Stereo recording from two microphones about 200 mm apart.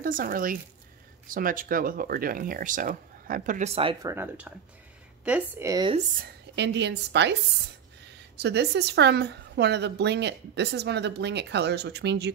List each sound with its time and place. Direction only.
0.0 s speech: 45° right (ahead or behind)
4.0 s a woman's voice: 15° right (ahead or behind)
6.5 s a woman's voice: 60° right (ahead or behind)
8.4 s a woman's voice: 55° right (ahead or behind)